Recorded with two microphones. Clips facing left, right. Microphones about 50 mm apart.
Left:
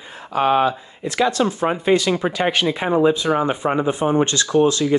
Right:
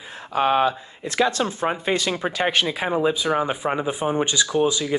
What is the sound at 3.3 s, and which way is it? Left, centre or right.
Speech, centre.